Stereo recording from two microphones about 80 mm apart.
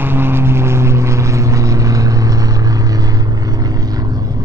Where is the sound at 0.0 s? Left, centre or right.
Right.